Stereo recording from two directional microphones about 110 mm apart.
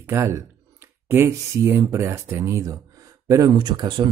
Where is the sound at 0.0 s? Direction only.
25° right (ahead or behind).